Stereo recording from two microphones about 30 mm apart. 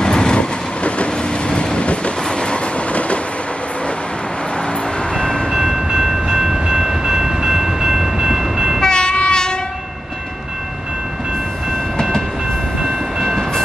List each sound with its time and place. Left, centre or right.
0.0 s vehicle: left
2.2 s train: left
5.1 s train: left
5.5 s train: centre
8.8 s train: left